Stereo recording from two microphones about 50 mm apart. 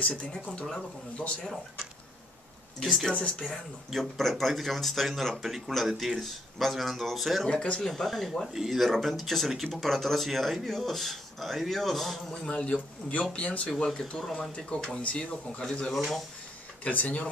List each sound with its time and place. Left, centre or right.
0.0 s speech: left
0.7 s speech: centre
2.8 s speech: centre
3.1 s speech: centre
3.4 s speech: centre
12.4 s speech: left
14.2 s speech: centre
15.0 s speech: left
15.9 s speech: centre
16.8 s speech: left